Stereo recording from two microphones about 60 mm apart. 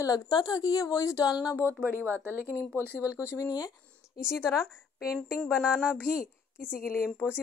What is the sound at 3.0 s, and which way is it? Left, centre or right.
Speech, left.